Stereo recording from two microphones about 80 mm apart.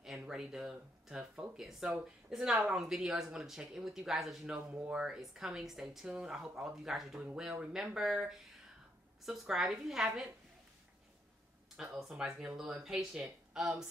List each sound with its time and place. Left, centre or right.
0.0 s speech: centre
4.6 s speech: centre
5.0 s speech: centre
11.7 s speech: centre